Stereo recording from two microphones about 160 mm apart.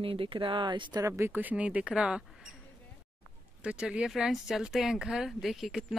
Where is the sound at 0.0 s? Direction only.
35° right (ahead or behind).